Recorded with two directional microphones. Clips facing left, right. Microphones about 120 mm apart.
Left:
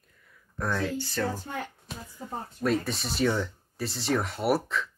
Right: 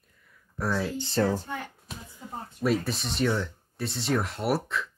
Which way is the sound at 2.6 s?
Centre (ahead or behind).